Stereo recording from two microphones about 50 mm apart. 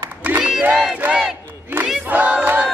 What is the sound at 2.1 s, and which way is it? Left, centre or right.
Battle cry, right.